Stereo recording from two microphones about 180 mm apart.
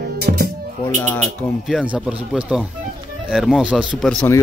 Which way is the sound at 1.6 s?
5° right (ahead or behind).